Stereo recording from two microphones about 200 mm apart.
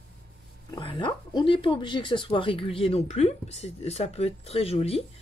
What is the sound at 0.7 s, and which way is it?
Speech, 25° left (ahead or behind).